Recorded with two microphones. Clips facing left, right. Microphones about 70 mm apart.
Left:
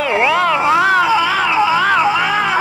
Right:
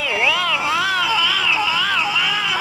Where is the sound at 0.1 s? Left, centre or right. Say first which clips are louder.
Left 6 dB; left.